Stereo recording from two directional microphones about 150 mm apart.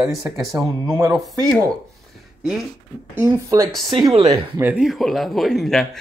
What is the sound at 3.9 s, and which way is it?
Speech, 30° right (ahead or behind).